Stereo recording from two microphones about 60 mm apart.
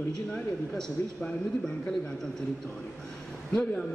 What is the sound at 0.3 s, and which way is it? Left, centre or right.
A man's voice, centre.